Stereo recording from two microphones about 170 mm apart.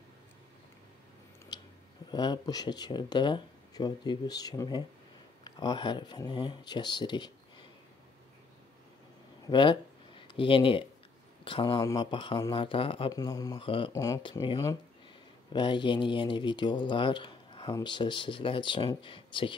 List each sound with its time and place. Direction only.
1.5 s a sound: 25° left (ahead or behind)
2.0 s speech: 25° left (ahead or behind)
9.5 s speech: 30° left (ahead or behind)
13.1 s speech: 20° left (ahead or behind)
13.6 s speech: 30° left (ahead or behind)
13.9 s speech: 20° left (ahead or behind)